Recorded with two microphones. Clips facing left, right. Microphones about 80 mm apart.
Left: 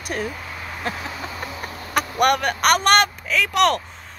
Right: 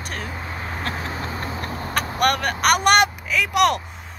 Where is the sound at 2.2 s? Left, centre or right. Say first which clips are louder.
Left 2 dB; centre.